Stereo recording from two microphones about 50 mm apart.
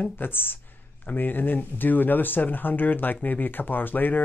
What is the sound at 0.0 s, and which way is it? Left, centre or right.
Speech, left.